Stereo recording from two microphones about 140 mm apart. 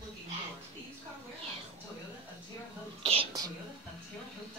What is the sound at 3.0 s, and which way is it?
Whispering, 40° right (ahead or behind).